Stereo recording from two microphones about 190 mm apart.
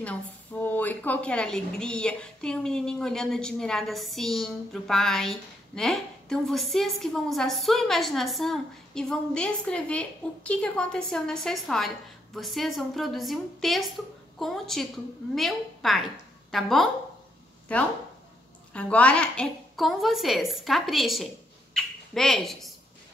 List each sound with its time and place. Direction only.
0.0 s a woman's voice: 10° left (ahead or behind)